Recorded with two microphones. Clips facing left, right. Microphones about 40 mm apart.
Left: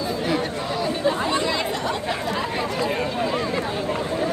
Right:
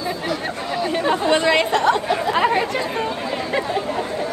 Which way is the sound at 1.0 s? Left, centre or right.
Right.